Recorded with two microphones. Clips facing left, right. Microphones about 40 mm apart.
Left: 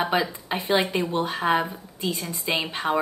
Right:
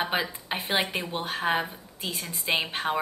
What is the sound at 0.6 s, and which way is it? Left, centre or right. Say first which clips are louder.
Speech: left 5 dB; right.